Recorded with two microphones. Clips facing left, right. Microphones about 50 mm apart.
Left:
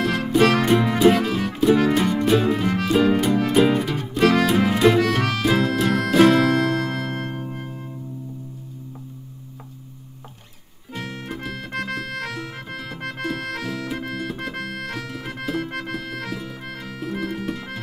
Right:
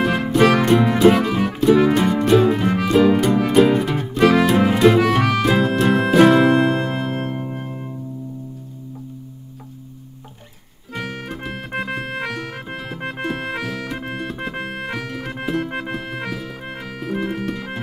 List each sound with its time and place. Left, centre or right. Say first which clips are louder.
0.0 s music: right 3 dB; centre
0.3 s music: right 2 dB; centre
6.5 s music: right 4 dB; right
11.0 s music: right 4 dB; right
11.2 s music: right 2 dB; centre
14.1 s music: right 2 dB; centre
14.5 s music: right 3 dB; right